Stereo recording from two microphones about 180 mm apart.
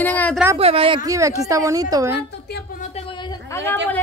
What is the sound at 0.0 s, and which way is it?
Speech, 10° left (ahead or behind).